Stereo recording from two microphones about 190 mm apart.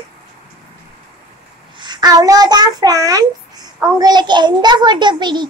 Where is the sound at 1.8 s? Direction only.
20° right (ahead or behind).